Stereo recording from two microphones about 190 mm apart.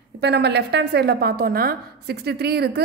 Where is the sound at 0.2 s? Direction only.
60° right (ahead or behind).